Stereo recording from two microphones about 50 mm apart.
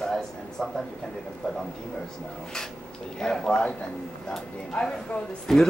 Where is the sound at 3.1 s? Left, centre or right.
Centre.